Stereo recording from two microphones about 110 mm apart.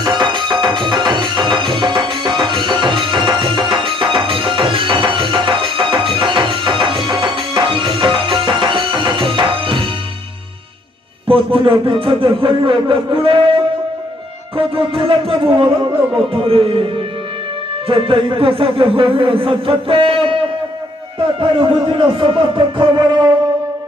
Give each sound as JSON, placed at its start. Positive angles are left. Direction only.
{"t": 0.0, "sound": "music", "side_deg": -45}
{"t": 11.2, "sound": "a man's voice", "side_deg": -55}
{"t": 14.6, "sound": "speech", "side_deg": -50}
{"t": 16.3, "sound": "music", "side_deg": -55}
{"t": 17.8, "sound": "speech", "side_deg": -55}